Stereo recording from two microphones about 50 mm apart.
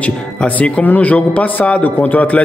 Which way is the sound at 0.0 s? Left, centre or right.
Left.